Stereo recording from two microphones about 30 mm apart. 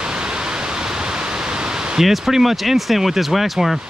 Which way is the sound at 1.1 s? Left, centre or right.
Right.